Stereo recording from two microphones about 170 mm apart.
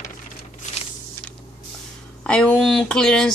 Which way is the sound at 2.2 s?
5° left (ahead or behind).